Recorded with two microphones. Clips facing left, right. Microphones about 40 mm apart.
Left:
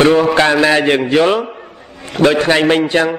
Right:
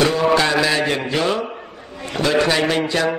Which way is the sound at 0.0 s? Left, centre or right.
Left.